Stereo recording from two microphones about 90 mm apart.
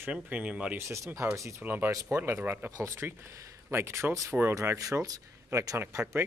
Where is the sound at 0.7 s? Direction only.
30° right (ahead or behind).